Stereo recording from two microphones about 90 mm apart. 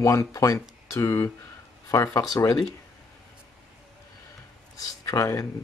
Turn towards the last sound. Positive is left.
turn(degrees=35)  # may be behind; listen again after turning